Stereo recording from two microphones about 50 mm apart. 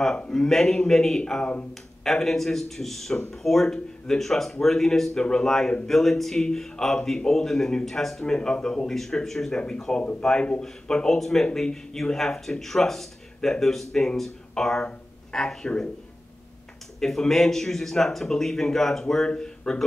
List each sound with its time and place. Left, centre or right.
0.3 s speech: centre
1.7 s speech: centre
8.4 s speech: centre
17.0 s speech: centre